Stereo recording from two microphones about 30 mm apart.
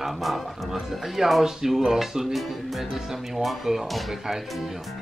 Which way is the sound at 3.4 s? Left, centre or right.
Centre.